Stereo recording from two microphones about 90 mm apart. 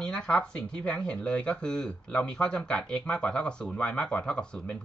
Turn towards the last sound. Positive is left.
turn(degrees=10)  # may be behind; listen again after turning